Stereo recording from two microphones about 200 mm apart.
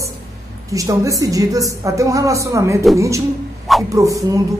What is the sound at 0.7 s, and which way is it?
Speech, 15° right (ahead or behind).